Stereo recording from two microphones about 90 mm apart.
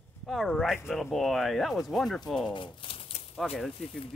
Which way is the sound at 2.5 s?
75° left (ahead or behind).